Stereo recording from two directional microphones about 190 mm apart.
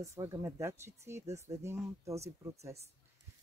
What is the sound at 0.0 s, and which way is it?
Speech, 15° right (ahead or behind).